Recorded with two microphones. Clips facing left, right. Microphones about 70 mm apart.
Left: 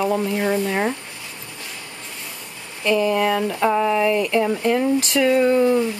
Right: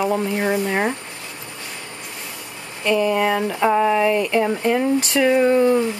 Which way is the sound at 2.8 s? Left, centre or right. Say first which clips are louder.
Even; centre.